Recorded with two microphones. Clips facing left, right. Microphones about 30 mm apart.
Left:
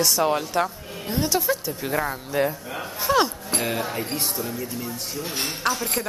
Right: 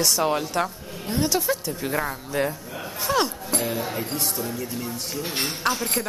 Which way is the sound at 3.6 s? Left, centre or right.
Left.